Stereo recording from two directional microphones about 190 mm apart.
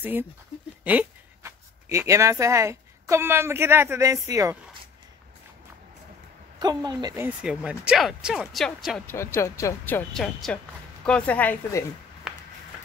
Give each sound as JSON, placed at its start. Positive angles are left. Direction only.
{"t": 0.0, "sound": "speech", "side_deg": -10}
{"t": 6.6, "sound": "a woman's voice", "side_deg": -20}
{"t": 7.2, "sound": "speech", "side_deg": -5}
{"t": 9.1, "sound": "speech", "side_deg": 15}
{"t": 12.3, "sound": "a sound", "side_deg": 0}